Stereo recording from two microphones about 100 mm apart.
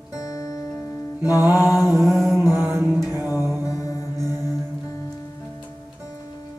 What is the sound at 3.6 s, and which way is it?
Music, 35° left (ahead or behind).